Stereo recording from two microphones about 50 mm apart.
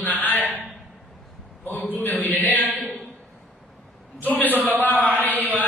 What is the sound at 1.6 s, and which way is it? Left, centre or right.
A man's voice, left.